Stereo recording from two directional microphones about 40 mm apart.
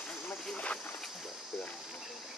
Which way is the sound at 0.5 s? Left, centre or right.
Left.